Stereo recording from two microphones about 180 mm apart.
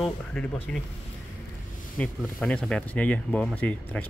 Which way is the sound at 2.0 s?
5° left (ahead or behind).